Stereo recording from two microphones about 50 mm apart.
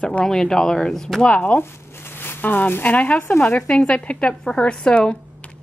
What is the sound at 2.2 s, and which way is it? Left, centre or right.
Speech, left.